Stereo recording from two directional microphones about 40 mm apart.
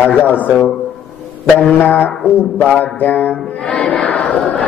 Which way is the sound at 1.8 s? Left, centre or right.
Left.